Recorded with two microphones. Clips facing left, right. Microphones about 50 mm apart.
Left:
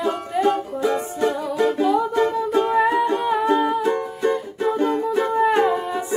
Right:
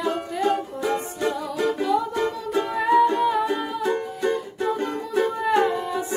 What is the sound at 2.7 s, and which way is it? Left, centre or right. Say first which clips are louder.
Music: right 3 dB; centre.